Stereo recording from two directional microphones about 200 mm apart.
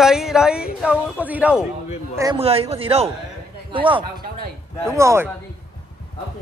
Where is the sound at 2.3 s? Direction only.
30° right (ahead or behind).